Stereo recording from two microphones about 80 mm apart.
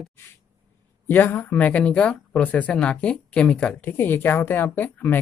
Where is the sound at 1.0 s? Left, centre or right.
Left.